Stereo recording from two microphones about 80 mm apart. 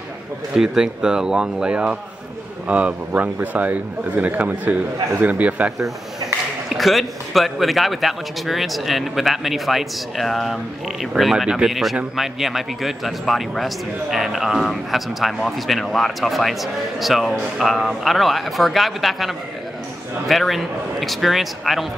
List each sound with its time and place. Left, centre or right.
0.6 s a man's voice: centre
6.7 s a man's voice: centre